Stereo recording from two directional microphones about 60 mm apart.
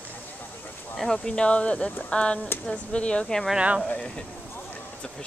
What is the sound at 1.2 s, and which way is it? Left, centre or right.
Speech, centre.